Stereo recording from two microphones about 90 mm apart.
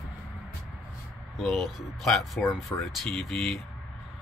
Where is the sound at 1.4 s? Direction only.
Centre (ahead or behind).